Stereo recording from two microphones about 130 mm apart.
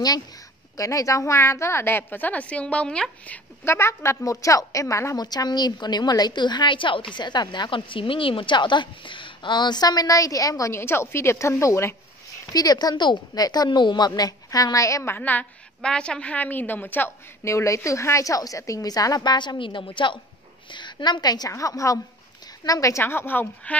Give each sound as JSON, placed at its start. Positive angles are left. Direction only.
{"t": 0.7, "sound": "a woman's voice", "side_deg": 25}
{"t": 3.6, "sound": "a woman's voice", "side_deg": 20}